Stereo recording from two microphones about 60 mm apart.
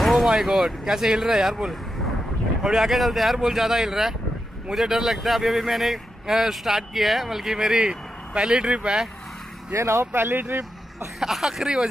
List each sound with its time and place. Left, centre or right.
0.0 s speech: centre
9.8 s speech: right
11.1 s speech: centre